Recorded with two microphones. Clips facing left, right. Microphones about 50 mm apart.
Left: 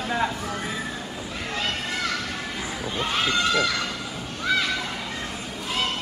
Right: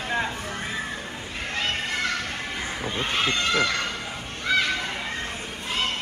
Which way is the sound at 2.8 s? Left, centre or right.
Right.